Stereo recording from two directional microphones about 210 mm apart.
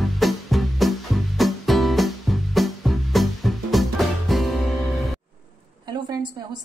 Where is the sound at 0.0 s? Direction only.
Centre (ahead or behind).